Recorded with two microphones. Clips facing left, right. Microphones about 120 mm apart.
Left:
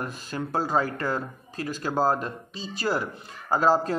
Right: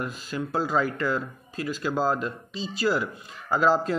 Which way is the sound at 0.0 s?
45° left (ahead or behind).